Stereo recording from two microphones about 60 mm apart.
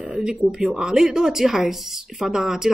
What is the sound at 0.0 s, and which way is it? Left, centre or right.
Speech, centre.